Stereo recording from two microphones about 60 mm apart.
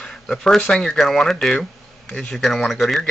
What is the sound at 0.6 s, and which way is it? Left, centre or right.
Speech, centre.